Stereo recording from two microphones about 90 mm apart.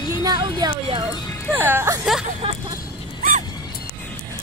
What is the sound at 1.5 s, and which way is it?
Speech, 20° right (ahead or behind).